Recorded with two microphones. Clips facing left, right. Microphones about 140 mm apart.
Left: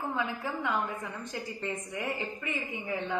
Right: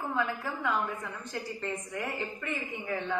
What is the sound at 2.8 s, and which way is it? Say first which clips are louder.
Speech: even; 15° left (ahead or behind).